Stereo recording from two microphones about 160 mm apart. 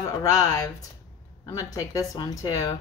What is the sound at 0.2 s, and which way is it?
Speech, 20° left (ahead or behind).